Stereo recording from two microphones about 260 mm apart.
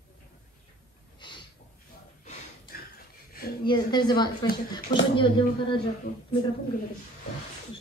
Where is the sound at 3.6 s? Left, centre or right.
Centre.